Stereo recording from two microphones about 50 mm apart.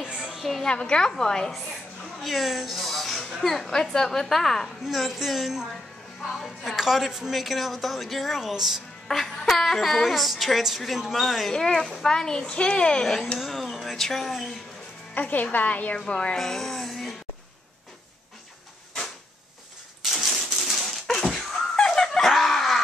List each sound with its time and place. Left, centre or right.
0.1 s music: centre
0.4 s a woman's voice: centre
0.7 s a woman's voice: centre
2.2 s speech: centre
4.8 s speech: centre
9.0 s speech: centre
11.5 s a child's voice: centre
13.0 s speech: centre
15.1 s a woman's voice: left
16.1 s speech: centre
20.0 s typewriter: centre
21.7 s dog: centre